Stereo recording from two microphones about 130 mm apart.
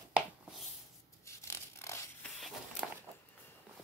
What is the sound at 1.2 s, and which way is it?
Zipper, 20° left (ahead or behind).